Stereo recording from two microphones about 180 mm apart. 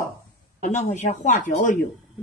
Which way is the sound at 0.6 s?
40° left (ahead or behind).